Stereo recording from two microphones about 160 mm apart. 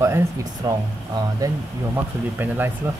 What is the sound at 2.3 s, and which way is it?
Speech, 15° right (ahead or behind).